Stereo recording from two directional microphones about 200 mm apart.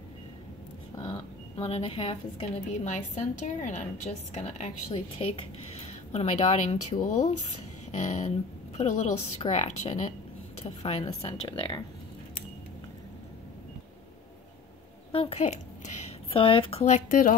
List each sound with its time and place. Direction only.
1.0 s a sound: 30° left (ahead or behind)
2.7 s a woman's voice: 35° left (ahead or behind)
15.1 s speech: 30° left (ahead or behind)